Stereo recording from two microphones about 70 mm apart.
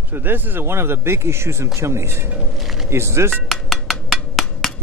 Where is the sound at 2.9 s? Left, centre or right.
Right.